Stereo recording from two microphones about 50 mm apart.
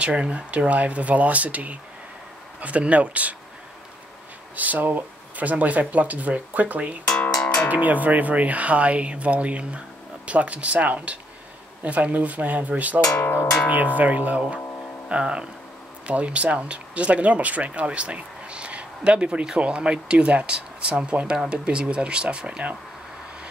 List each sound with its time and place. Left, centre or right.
0.0 s speech: right
4.6 s speech: right
13.2 s music: left
13.9 s speech: right